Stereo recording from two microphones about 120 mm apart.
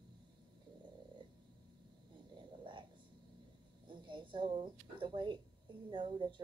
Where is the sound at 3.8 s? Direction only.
45° right (ahead or behind).